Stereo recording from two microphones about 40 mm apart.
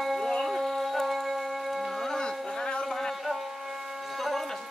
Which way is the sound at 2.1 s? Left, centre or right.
Centre.